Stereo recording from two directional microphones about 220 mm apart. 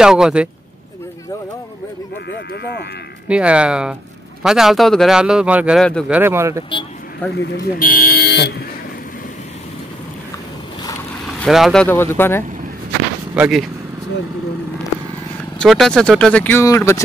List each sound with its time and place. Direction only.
0.0 s a man's voice: 5° right (ahead or behind)
3.3 s a man's voice: 5° right (ahead or behind)
7.5 s speech: 40° left (ahead or behind)
11.2 s speech: centre (ahead or behind)
13.3 s a man's voice: 5° right (ahead or behind)
15.6 s a man's voice: centre (ahead or behind)